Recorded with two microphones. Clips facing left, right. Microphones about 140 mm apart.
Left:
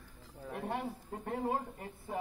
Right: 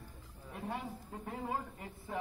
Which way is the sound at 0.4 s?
65° left (ahead or behind).